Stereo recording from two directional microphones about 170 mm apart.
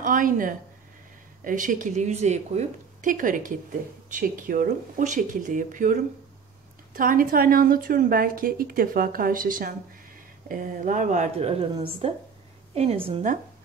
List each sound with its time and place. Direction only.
0.0 s speech: 50° right (ahead or behind)
7.0 s a woman's voice: 55° right (ahead or behind); by 13.2 s 35° right (ahead or behind)